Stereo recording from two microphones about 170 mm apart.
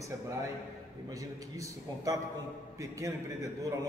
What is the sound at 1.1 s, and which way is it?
A man's voice, 20° right (ahead or behind).